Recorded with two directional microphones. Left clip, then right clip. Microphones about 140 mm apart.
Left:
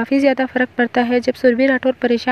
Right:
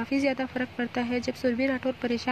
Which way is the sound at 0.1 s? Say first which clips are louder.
Left 12 dB; 35° left (ahead or behind).